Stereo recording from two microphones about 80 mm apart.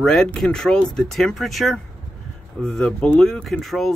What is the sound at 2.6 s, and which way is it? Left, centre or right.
Speech, centre.